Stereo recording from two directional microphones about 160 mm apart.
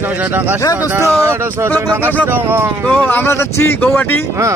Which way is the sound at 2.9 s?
10° left (ahead or behind).